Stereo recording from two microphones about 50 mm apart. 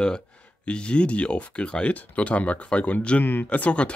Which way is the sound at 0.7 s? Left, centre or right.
Left.